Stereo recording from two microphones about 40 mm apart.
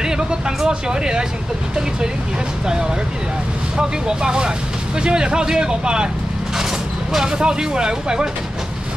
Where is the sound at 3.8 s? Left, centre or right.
Centre.